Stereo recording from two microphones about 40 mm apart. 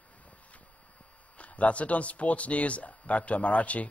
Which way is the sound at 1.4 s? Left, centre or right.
Left.